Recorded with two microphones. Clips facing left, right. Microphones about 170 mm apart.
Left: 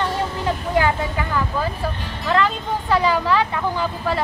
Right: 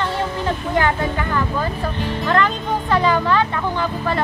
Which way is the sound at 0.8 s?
10° left (ahead or behind).